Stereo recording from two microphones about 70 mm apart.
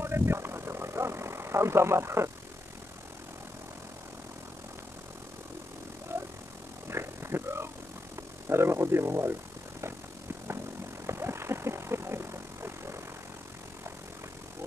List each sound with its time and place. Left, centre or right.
0.0 s vehicle: right
6.9 s a sound: right
8.5 s speech: right
11.1 s vehicle: right